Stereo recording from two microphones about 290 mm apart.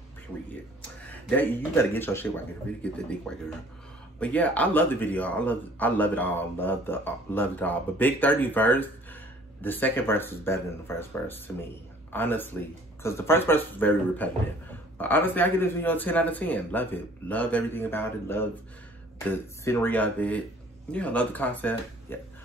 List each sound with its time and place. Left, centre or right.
1.3 s speech: centre
19.6 s speech: centre